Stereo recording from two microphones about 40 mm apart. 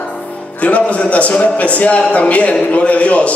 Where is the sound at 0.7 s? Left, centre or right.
Left.